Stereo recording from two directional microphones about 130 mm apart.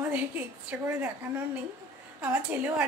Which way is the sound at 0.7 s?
10° right (ahead or behind).